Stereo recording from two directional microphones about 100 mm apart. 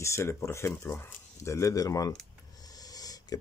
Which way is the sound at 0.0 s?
30° left (ahead or behind).